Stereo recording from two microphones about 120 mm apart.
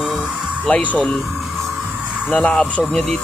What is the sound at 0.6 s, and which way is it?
Speech, 10° left (ahead or behind).